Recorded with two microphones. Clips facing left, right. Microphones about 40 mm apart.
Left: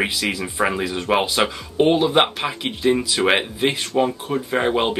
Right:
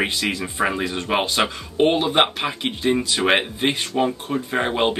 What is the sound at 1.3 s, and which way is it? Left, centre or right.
Speech, centre.